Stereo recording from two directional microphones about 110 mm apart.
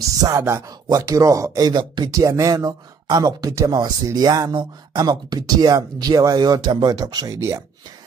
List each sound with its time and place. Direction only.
0.4 s speech: 25° right (ahead or behind)